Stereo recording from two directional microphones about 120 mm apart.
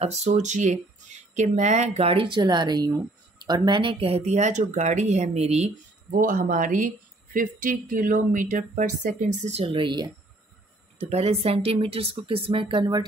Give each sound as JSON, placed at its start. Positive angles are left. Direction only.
{"t": 0.0, "sound": "speech", "side_deg": -70}
{"t": 2.0, "sound": "speech", "side_deg": -45}
{"t": 6.2, "sound": "speech", "side_deg": -90}
{"t": 9.7, "sound": "speech", "side_deg": -40}
{"t": 11.0, "sound": "speech", "side_deg": -65}